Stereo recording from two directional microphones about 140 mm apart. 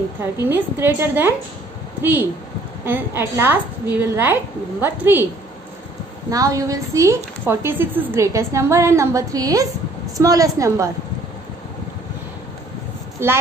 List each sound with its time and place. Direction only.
0.2 s a woman's voice: 15° right (ahead or behind)
6.3 s a woman's voice: 25° right (ahead or behind)
13.2 s a woman's voice: 20° right (ahead or behind)